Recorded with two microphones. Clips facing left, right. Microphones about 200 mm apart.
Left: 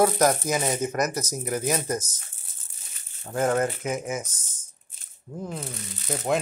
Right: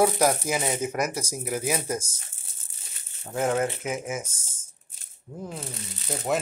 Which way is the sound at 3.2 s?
5° right (ahead or behind).